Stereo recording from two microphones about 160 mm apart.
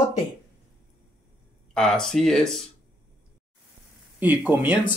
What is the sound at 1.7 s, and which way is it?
Speech, 5° left (ahead or behind).